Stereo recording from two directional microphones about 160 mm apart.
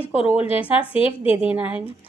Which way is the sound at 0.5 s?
35° left (ahead or behind).